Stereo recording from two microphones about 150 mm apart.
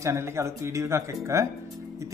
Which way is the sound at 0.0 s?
20° right (ahead or behind).